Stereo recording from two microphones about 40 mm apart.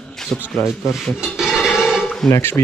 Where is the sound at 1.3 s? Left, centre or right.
Centre.